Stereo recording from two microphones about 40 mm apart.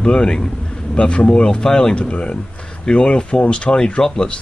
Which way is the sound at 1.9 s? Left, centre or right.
Left.